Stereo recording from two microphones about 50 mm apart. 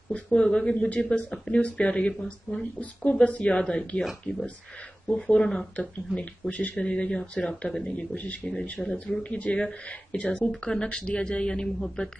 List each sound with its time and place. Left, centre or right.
0.1 s speech: centre
1.3 s speech: centre
5.2 s speech: centre
8.1 s speech: left
8.5 s speech: left
10.6 s speech: centre